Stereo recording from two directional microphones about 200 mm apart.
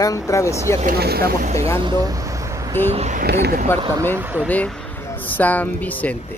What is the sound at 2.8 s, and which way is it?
Speech, 35° right (ahead or behind).